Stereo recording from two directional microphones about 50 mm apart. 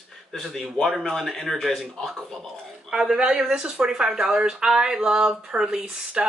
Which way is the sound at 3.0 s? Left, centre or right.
Centre.